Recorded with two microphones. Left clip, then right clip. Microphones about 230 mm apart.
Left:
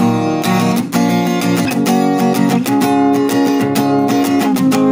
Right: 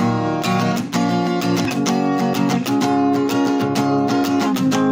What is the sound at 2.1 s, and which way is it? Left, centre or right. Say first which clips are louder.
Music: left 5 dB; left.